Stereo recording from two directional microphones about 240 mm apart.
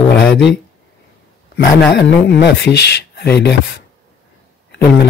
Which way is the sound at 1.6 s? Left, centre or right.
Left.